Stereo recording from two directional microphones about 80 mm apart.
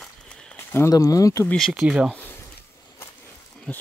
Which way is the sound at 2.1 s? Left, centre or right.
Left.